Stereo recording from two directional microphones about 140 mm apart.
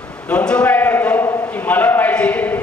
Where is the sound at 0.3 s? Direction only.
10° left (ahead or behind).